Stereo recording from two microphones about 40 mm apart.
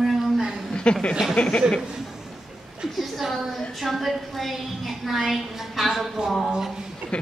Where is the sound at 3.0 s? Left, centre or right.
Centre.